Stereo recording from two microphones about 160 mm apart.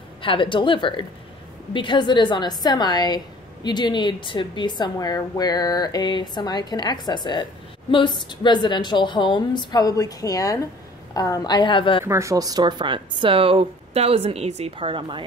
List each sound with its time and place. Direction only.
0.2 s a woman's voice: 35° left (ahead or behind)
12.0 s speech: 20° right (ahead or behind)